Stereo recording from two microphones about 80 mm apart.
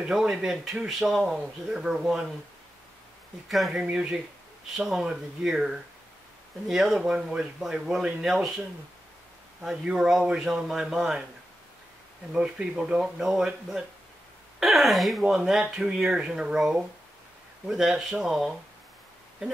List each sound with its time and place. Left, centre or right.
0.0 s speech: centre
3.4 s speech: centre
3.7 s a man's voice: centre
12.4 s a man's voice: centre
14.6 s speech: centre